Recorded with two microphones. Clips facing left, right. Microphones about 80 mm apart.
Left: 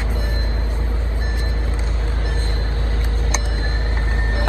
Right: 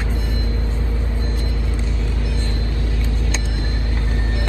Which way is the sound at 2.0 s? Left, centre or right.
Left.